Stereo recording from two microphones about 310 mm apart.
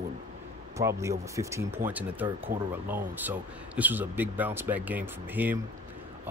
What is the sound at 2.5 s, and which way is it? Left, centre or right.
Speech, right.